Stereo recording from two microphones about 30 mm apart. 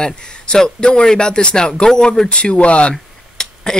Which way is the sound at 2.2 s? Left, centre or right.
Left.